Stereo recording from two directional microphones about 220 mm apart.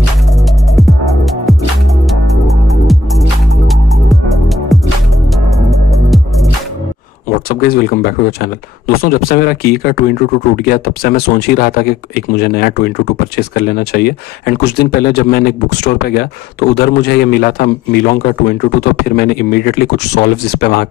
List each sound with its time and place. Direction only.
0.7 s music: centre (ahead or behind)
7.2 s speech: 40° left (ahead or behind)